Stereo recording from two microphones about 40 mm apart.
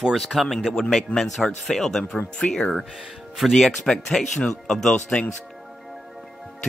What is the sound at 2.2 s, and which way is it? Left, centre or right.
Speech, left.